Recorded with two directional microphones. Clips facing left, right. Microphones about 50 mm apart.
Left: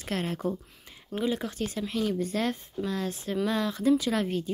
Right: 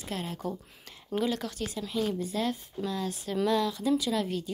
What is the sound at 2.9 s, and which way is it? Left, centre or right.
A woman's voice, left.